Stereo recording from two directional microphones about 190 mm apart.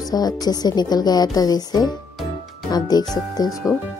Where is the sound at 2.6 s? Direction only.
20° left (ahead or behind).